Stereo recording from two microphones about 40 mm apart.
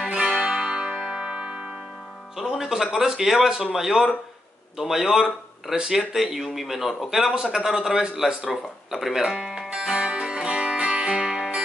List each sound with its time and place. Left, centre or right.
0.1 s music: centre
2.8 s speech: centre
8.5 s speech: centre
9.4 s music: centre